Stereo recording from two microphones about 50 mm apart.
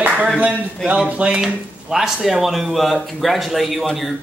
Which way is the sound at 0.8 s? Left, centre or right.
Right.